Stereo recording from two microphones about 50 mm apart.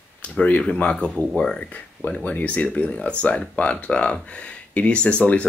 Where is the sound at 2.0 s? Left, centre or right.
Left.